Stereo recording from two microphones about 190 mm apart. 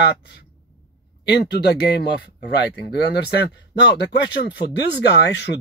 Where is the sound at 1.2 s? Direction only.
60° left (ahead or behind).